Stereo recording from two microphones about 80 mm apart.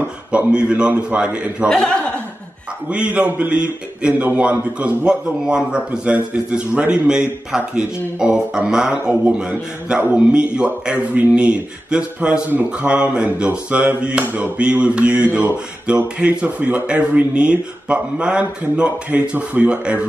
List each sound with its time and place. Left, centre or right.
0.5 s speech: centre
1.7 s speech: centre
2.9 s speech: centre
8.9 s speech: right